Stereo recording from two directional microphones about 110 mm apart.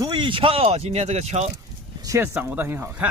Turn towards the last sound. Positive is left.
turn(degrees=-20)  # may be behind; listen again after turning